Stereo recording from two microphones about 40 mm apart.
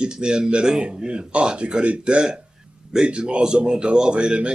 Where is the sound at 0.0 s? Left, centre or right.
Right.